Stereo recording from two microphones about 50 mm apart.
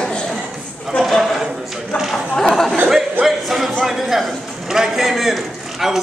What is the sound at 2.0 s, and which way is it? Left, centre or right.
Chatter, centre.